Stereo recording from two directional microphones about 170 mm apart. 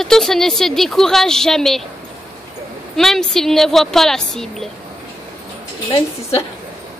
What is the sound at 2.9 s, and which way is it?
A woman's voice, centre (ahead or behind).